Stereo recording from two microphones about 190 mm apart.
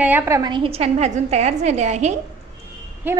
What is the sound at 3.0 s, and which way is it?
Speech, 10° right (ahead or behind).